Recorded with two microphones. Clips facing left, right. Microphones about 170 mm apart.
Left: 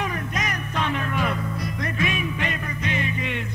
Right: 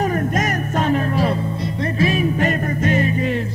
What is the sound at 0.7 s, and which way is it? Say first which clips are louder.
Music: right 7 dB; 40° right (ahead or behind).